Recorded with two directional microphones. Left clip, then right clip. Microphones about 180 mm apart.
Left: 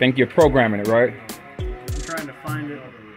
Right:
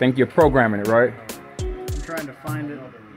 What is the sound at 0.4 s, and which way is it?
Speech, 10° left (ahead or behind).